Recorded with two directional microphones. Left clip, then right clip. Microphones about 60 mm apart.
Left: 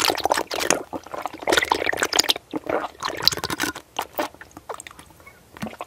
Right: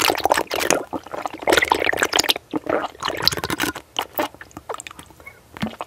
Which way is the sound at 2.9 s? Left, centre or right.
Centre.